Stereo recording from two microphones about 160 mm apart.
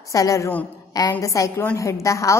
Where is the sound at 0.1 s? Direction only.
20° left (ahead or behind).